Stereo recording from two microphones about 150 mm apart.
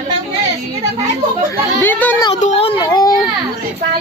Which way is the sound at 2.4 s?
45° left (ahead or behind).